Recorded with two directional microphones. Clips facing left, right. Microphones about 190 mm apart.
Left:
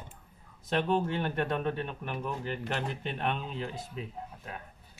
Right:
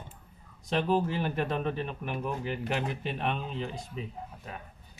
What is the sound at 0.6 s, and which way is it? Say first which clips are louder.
Speech: right 1 dB; centre (ahead or behind).